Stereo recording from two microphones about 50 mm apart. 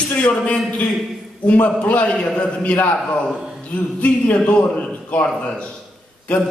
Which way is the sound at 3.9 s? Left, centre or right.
Left.